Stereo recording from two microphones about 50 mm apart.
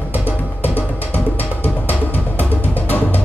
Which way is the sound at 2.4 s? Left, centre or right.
Left.